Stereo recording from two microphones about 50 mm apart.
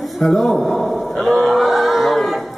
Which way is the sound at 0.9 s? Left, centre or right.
Centre.